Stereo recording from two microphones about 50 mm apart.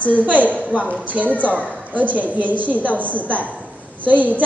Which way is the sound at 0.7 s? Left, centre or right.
Left.